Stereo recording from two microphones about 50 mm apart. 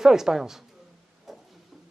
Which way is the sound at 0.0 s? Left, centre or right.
Centre.